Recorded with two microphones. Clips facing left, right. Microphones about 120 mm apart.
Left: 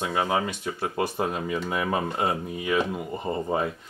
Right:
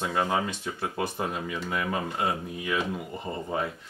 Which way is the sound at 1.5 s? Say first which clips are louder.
Left 4 dB; 20° left (ahead or behind).